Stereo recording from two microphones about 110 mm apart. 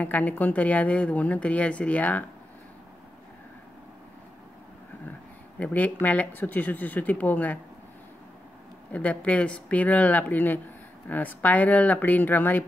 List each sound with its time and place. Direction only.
0.0 s a woman's voice: 15° left (ahead or behind)
5.6 s a woman's voice: 15° left (ahead or behind)
8.9 s a woman's voice: 15° left (ahead or behind)